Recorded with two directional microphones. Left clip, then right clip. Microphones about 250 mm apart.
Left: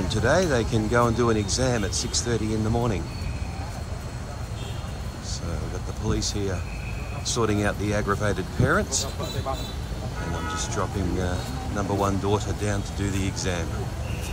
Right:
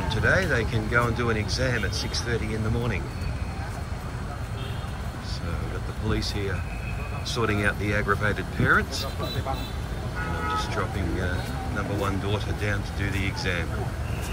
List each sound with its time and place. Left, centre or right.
0.1 s speech: centre
6.0 s speech: centre
10.5 s speech: centre
12.0 s speech: centre